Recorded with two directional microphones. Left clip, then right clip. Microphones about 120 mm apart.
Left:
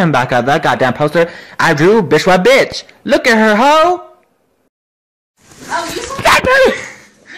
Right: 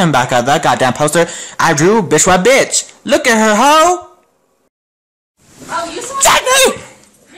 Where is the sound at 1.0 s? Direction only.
15° right (ahead or behind).